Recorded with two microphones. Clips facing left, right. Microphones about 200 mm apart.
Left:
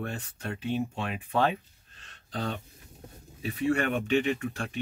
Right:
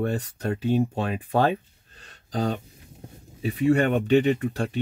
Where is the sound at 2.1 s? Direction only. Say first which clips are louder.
Right 7 dB; 35° right (ahead or behind).